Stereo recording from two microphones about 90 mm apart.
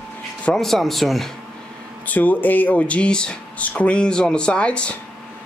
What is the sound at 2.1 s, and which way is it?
Speech, 20° left (ahead or behind).